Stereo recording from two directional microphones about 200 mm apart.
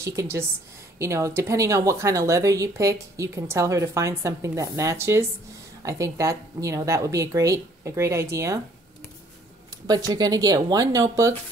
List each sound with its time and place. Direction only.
0.0 s speech: 15° right (ahead or behind)
9.8 s speech: 20° right (ahead or behind)